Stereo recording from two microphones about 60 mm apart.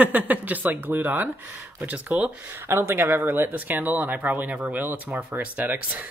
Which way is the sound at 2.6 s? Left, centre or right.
Right.